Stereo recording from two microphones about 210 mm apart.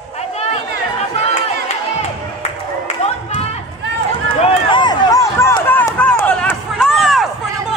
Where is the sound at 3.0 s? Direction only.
30° left (ahead or behind).